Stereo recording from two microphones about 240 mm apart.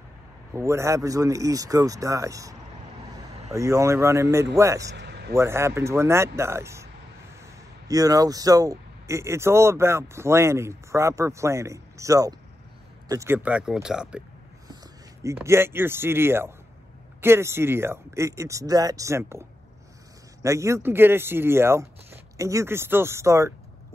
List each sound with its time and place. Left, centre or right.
0.5 s speech: centre
3.5 s speech: centre
4.9 s a sound: right
5.3 s speech: centre
15.2 s speech: centre
20.4 s speech: centre